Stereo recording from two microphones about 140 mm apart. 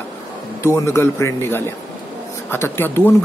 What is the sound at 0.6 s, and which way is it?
A man's voice, 20° left (ahead or behind).